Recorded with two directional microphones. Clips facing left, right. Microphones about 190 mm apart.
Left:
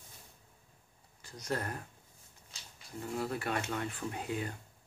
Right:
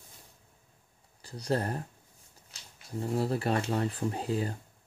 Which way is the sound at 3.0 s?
30° right (ahead or behind).